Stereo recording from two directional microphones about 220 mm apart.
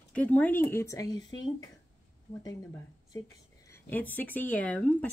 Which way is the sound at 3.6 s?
10° left (ahead or behind).